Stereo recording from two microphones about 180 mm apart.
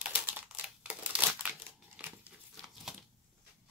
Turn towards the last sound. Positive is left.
turn(degrees=0)  # may be behind; listen again after turning